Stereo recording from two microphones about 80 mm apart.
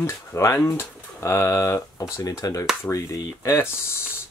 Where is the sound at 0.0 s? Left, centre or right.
Left.